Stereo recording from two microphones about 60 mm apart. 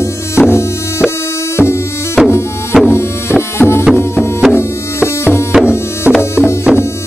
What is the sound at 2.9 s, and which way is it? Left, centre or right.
Music, left.